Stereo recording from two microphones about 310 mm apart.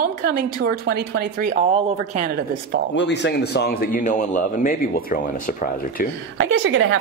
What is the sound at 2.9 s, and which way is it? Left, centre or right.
A man's voice, left.